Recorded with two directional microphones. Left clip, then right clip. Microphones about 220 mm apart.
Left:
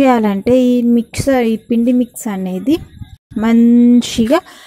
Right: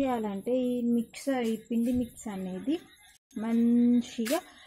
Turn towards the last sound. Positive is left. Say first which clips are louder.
# left 17 dB
turn(degrees=40)  # may be behind; listen again after turning